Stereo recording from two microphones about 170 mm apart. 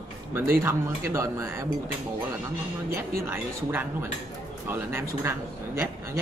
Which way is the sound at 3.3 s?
15° right (ahead or behind).